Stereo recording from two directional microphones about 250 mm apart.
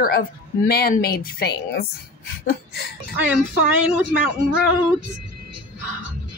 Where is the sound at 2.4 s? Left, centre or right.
Left.